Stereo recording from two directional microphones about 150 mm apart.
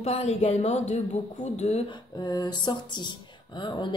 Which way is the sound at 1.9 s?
30° left (ahead or behind).